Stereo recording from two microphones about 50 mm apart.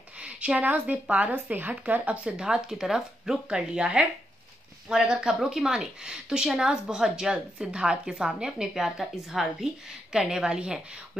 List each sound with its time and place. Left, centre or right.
0.2 s a woman's voice: right
2.2 s a woman's voice: centre